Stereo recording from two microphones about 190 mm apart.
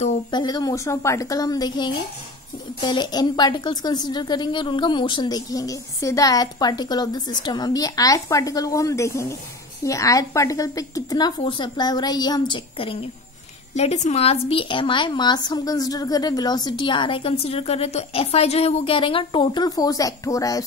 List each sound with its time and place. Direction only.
0.3 s a woman's voice: 20° left (ahead or behind)